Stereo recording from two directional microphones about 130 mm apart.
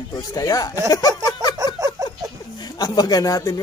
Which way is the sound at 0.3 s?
30° left (ahead or behind).